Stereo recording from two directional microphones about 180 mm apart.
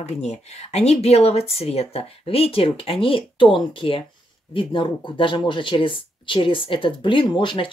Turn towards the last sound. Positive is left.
turn(degrees=25)  # may be behind; listen again after turning